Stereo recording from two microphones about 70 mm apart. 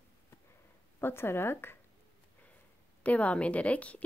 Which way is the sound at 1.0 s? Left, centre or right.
Left.